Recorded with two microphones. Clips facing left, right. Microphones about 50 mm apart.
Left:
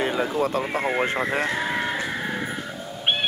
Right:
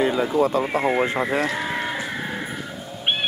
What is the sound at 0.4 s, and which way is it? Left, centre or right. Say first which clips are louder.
Speech: right 4 dB; right.